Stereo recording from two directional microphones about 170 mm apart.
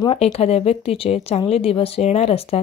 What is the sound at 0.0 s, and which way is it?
Speech, 35° left (ahead or behind).